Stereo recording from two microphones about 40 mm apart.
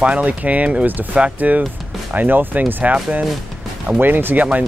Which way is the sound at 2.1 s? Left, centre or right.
Right.